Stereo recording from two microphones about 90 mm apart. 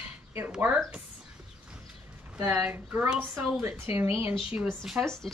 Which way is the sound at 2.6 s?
25° right (ahead or behind).